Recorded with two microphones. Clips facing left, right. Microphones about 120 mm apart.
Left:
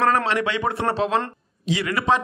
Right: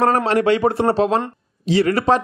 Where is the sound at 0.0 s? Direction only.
40° right (ahead or behind).